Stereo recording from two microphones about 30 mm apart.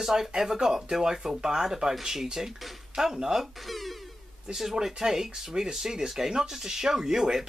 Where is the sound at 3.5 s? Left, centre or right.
Centre.